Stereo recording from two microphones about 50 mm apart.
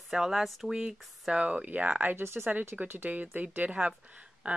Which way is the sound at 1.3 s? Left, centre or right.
Right.